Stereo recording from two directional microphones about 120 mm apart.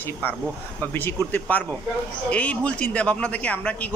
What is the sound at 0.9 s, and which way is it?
A man's voice, 20° left (ahead or behind).